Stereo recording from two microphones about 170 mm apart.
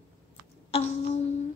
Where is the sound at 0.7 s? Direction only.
40° left (ahead or behind).